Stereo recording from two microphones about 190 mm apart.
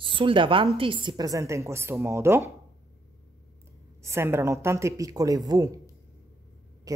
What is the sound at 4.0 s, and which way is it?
A woman's voice, 15° right (ahead or behind).